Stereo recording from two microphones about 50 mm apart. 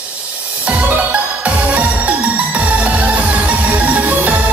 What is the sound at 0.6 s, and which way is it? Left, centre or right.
Music, right.